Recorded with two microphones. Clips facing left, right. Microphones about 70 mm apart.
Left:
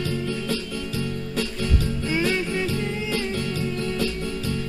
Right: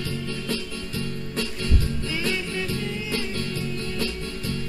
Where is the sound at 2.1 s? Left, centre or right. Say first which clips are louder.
Left 5 dB; left.